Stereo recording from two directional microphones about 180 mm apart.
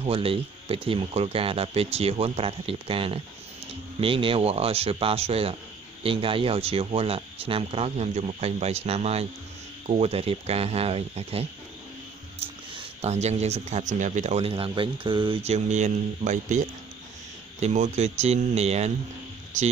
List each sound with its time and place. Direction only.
0.0 s speech: 30° right (ahead or behind)
13.0 s speech: 40° right (ahead or behind)